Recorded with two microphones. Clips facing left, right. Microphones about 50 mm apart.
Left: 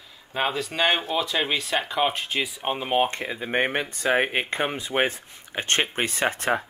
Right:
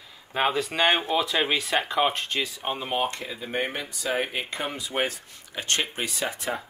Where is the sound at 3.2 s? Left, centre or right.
Left.